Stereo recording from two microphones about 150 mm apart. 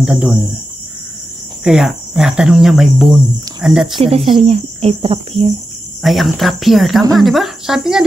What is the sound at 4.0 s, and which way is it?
Speech, 40° right (ahead or behind).